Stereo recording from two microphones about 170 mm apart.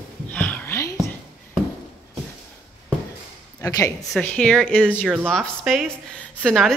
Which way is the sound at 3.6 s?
20° left (ahead or behind).